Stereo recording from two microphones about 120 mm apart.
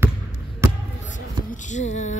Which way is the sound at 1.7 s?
85° left.